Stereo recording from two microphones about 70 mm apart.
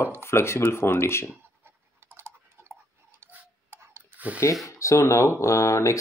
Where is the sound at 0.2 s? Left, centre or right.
Left.